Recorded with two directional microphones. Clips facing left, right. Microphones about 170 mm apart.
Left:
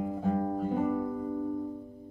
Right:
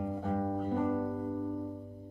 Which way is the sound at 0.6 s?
10° left (ahead or behind).